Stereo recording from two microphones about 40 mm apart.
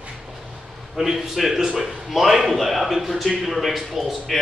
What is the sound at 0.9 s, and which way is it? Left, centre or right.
A man's voice, centre.